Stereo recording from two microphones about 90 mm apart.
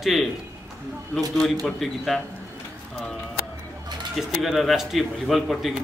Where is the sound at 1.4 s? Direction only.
Centre (ahead or behind).